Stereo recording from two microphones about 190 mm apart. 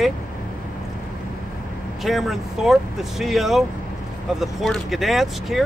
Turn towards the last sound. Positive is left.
turn(degrees=0)  # may be behind; listen again after turning